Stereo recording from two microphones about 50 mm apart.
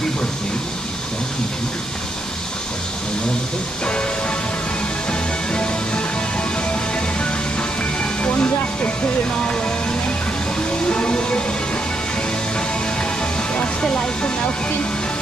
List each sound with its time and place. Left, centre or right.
5.5 s music: centre
8.0 s vehicle: left
10.9 s music: left
13.6 s music: centre